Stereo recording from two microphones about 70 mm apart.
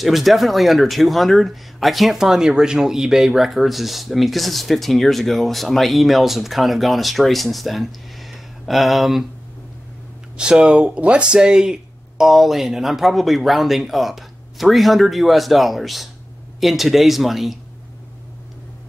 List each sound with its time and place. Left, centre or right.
0.0 s speech: centre
10.3 s speech: centre